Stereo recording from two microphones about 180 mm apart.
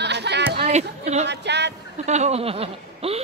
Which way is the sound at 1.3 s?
70° right (ahead or behind).